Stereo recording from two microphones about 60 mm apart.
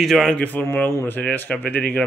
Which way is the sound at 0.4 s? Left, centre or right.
Left.